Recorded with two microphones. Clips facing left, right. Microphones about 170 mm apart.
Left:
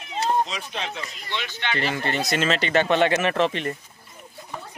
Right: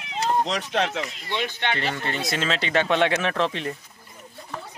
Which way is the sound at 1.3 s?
45° right (ahead or behind).